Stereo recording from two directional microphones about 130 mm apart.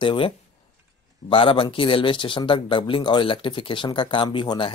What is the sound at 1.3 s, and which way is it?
Speech, 45° left (ahead or behind).